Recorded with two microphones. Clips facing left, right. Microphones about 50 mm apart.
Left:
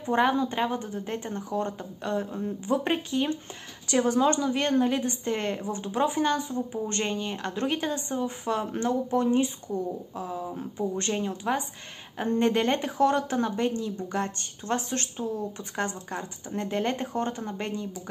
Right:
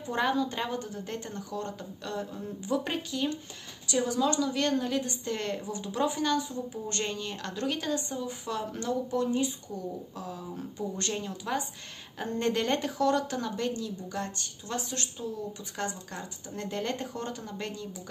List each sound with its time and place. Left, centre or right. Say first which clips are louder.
0.0 s speech: left 4 dB; left
3.8 s a woman's voice: left 5 dB; left